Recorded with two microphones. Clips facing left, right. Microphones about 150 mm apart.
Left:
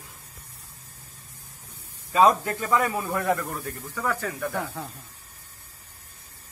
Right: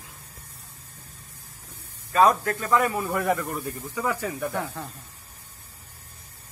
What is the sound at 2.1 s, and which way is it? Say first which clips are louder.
A man's voice: even; 10° left (ahead or behind).